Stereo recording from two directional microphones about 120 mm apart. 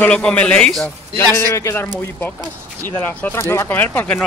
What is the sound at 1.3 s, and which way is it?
A man's voice, 20° left (ahead or behind).